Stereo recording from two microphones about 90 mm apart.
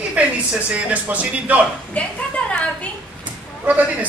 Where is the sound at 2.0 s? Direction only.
15° left (ahead or behind).